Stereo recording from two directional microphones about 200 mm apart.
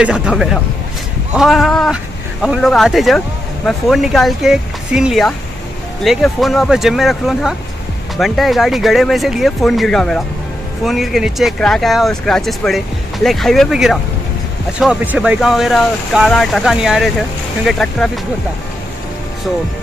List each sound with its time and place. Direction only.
0.0 s speech: 5° right (ahead or behind)